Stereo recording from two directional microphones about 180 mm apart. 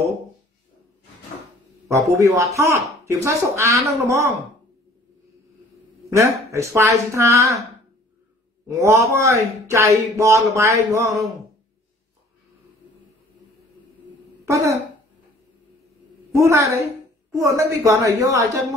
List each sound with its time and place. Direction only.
1.9 s speech: 15° right (ahead or behind)
6.1 s speech: 15° right (ahead or behind)
8.8 s speech: 15° right (ahead or behind)
14.4 s speech: 15° right (ahead or behind)
16.3 s speech: 15° right (ahead or behind)